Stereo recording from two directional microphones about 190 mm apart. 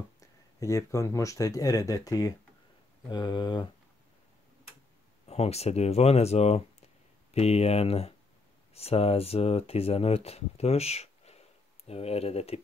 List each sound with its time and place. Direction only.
0.2 s speech: 15° left (ahead or behind)
5.2 s speech: 35° left (ahead or behind)